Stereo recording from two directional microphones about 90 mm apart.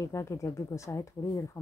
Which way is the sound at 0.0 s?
35° left (ahead or behind).